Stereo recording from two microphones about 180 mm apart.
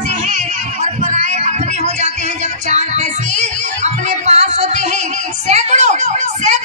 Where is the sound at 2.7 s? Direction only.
40° right (ahead or behind).